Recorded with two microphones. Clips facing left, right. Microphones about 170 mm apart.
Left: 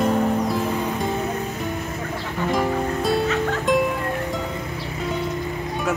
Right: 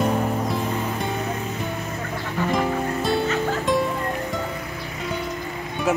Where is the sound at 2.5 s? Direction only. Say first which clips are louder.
Left 2 dB; centre (ahead or behind).